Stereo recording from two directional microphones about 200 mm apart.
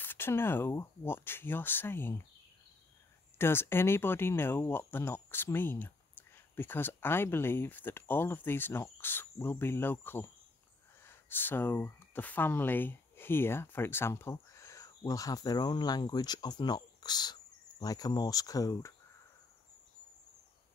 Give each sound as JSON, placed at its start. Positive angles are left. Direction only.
{"t": 0.0, "sound": "speech", "side_deg": 10}
{"t": 3.3, "sound": "speech", "side_deg": 10}